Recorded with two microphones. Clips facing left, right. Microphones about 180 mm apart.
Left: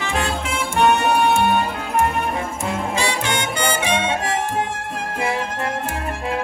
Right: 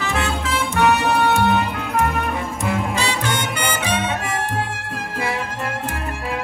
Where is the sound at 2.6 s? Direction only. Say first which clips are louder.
Right 1 dB; 15° left (ahead or behind).